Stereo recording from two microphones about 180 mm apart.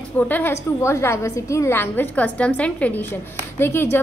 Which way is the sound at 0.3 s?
10° left (ahead or behind).